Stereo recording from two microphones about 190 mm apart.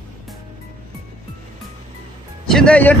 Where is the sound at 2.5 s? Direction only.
5° left (ahead or behind).